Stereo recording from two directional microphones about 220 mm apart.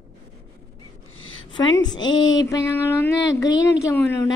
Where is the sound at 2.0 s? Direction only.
60° left (ahead or behind).